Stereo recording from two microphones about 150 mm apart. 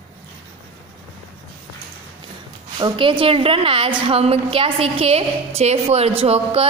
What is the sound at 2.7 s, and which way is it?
A woman's voice, 35° right (ahead or behind).